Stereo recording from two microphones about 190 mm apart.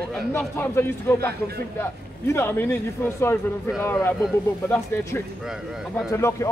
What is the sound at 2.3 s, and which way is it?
Speech, 10° left (ahead or behind).